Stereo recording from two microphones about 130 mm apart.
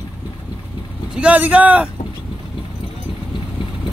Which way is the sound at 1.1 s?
10° right (ahead or behind).